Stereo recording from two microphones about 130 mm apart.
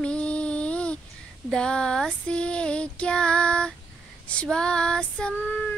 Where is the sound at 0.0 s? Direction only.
10° left (ahead or behind).